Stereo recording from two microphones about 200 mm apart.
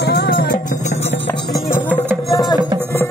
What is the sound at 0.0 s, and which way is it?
Music, 50° left (ahead or behind).